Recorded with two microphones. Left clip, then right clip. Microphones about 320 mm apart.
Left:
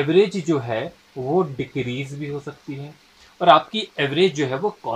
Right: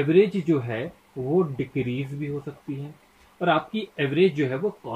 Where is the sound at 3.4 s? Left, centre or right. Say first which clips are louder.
Left 9 dB; left.